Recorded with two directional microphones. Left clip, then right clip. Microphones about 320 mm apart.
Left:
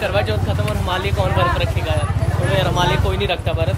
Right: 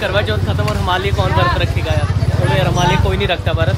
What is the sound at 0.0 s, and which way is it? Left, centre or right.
Speech, centre.